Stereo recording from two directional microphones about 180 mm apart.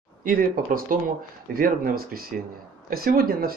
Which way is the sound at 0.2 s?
50° right (ahead or behind).